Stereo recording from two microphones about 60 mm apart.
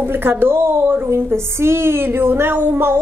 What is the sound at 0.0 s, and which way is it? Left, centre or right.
A woman's voice, right.